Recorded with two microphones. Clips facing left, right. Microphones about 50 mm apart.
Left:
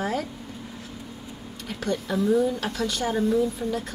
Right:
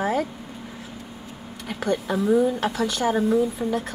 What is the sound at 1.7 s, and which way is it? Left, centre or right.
Speech, right.